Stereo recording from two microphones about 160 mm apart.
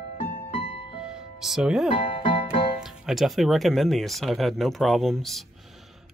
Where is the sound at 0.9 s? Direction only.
5° right (ahead or behind).